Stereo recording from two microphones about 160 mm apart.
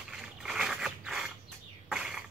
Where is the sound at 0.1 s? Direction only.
5° right (ahead or behind).